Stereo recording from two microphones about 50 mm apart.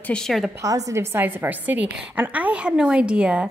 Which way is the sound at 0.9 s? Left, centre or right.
Right.